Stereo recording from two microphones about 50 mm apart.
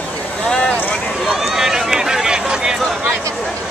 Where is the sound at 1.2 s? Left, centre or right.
Centre.